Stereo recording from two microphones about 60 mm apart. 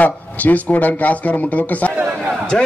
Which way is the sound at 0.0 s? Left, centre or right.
Left.